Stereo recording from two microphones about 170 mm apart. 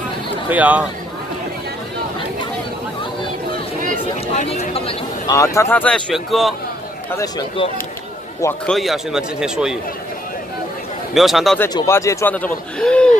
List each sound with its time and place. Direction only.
0.5 s speech: 10° right (ahead or behind)
4.3 s speech: 40° left (ahead or behind)
5.3 s a man's voice: 20° left (ahead or behind); by 6.5 s centre (ahead or behind)
7.1 s a man's voice: 15° left (ahead or behind)
8.6 s speech: centre (ahead or behind)
11.1 s speech: centre (ahead or behind)
11.7 s a man's voice: 20° left (ahead or behind)